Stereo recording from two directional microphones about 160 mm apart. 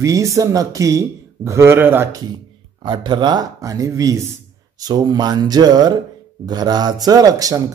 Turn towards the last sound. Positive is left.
turn(degrees=-20)  # may be behind; listen again after turning